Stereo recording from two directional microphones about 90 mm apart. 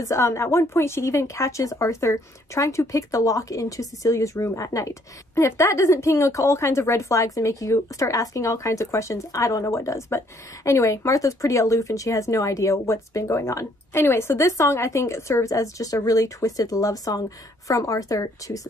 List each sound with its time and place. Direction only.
0.0 s speech: 35° left (ahead or behind)